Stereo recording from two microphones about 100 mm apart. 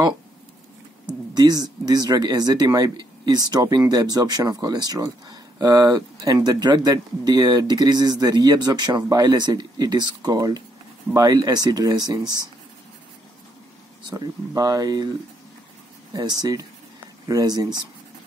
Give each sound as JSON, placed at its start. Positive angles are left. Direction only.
{"t": 1.3, "sound": "speech", "side_deg": -45}
{"t": 14.0, "sound": "speech", "side_deg": -40}
{"t": 16.1, "sound": "speech", "side_deg": -40}